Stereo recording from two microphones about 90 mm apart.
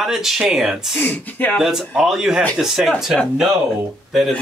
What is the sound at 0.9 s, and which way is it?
Speech, 20° left (ahead or behind).